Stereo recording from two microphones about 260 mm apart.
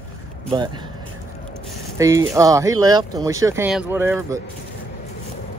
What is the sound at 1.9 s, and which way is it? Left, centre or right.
Speech, centre.